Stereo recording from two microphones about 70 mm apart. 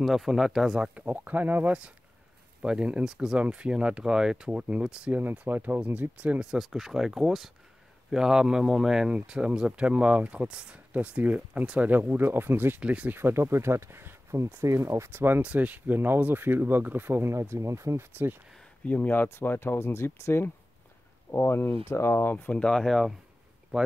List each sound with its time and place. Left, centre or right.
0.0 s speech: centre
0.9 s speech: right
5.1 s speech: right
11.9 s speech: right
12.8 s speech: centre
13.2 s speech: right
15.0 s speech: right
18.9 s speech: left
22.5 s speech: centre